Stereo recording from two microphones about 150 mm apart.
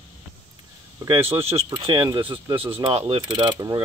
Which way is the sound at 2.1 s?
30° right (ahead or behind).